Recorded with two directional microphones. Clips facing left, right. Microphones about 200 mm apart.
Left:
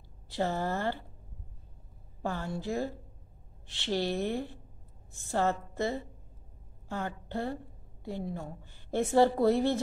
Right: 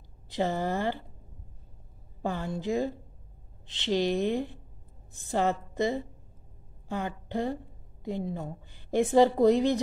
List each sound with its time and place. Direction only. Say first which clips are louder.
0.3 s a woman's voice: right 2 dB; 15° right (ahead or behind)
2.2 s a woman's voice: right 3 dB; 15° right (ahead or behind)